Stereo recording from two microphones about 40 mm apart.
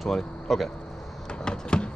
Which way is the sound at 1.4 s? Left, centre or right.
Left.